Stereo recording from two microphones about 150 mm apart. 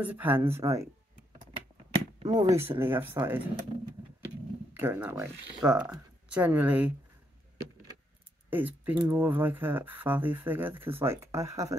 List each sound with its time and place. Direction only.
0.0 s speech: 10° right (ahead or behind)
2.2 s speech: 25° right (ahead or behind)
2.7 s speech: 15° right (ahead or behind)
4.7 s speech: 10° right (ahead or behind)
8.5 s speech: 10° right (ahead or behind)